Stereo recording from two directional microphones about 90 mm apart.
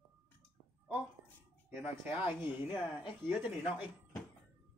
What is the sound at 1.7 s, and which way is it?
Speech, 20° right (ahead or behind).